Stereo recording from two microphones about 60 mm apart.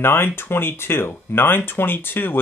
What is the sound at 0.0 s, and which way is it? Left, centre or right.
Speech, left.